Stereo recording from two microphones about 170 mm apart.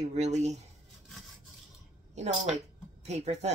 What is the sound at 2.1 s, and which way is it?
Speech, 40° right (ahead or behind).